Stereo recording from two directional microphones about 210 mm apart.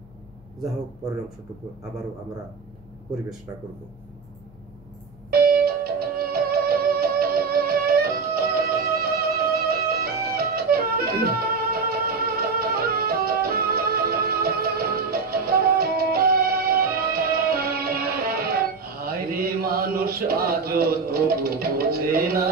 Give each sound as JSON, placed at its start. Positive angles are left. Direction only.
{"t": 5.3, "sound": "music", "side_deg": -45}